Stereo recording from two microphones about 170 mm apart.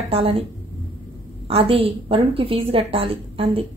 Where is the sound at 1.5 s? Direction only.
35° right (ahead or behind).